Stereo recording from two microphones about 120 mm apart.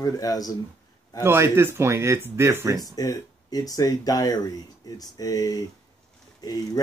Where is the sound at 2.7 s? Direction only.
30° left (ahead or behind).